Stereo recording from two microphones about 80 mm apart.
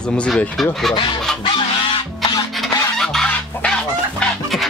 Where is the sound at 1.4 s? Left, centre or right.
Left.